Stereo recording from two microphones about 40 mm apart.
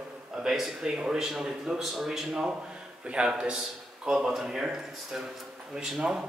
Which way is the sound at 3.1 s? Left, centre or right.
Right.